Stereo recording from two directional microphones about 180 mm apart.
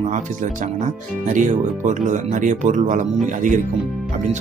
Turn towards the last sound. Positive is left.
turn(degrees=-45)  # may be behind; listen again after turning